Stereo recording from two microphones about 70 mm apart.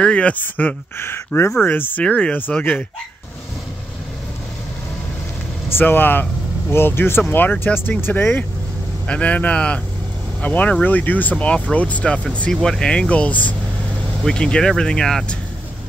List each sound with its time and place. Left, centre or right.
0.0 s speech: centre
0.9 s speech: left
2.0 s speech: centre
2.3 s speech: left
5.8 s speech: left; by 15.3 s centre